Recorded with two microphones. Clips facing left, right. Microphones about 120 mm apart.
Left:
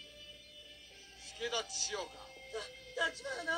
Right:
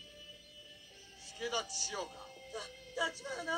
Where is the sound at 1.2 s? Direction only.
15° left (ahead or behind).